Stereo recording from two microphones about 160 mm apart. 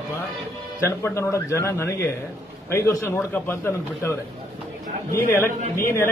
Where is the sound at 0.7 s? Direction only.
15° left (ahead or behind).